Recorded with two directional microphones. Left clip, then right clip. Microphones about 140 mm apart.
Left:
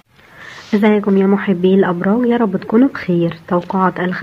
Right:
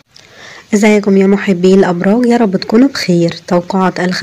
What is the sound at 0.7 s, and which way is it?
Speech, 35° right (ahead or behind).